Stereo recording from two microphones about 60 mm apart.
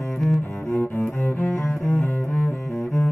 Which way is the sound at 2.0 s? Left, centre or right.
Left.